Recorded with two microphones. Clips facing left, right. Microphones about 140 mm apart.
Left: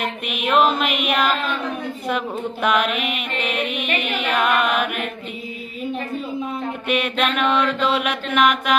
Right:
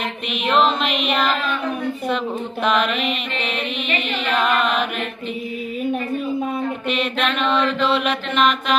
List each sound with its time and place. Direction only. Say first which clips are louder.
0.3 s music: even; 10° left (ahead or behind)
2.6 s mantra: right 1 dB; 5° left (ahead or behind)
3.9 s carnatic music: even; 55° left (ahead or behind)
4.3 s mantra: even; 5° left (ahead or behind)
6.9 s mantra: left 3 dB; 5° left (ahead or behind)